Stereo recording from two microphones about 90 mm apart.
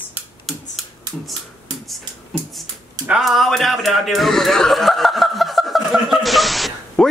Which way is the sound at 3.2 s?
Centre (ahead or behind).